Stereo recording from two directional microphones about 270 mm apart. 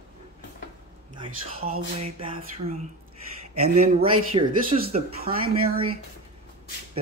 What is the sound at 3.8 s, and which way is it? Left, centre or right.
Speech, right.